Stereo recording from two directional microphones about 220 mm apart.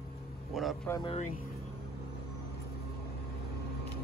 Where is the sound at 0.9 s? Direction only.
25° left (ahead or behind).